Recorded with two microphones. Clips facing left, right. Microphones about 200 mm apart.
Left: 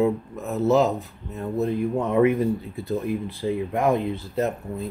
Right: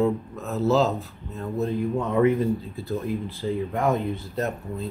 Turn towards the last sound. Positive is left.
turn(degrees=20)  # may be behind; listen again after turning